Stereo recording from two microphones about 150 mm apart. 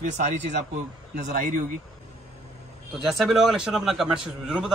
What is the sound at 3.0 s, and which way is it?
A man's voice, centre (ahead or behind).